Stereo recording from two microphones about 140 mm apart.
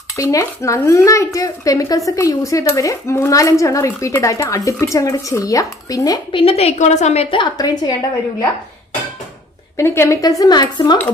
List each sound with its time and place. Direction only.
0.1 s speech: 25° left (ahead or behind)
6.3 s a woman's voice: 45° left (ahead or behind); by 7.9 s 30° left (ahead or behind)
9.8 s speech: 20° left (ahead or behind)